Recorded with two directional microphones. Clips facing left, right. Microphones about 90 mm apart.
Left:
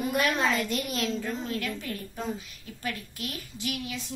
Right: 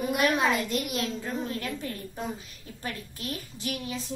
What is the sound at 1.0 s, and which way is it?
A woman's voice, 30° right (ahead or behind).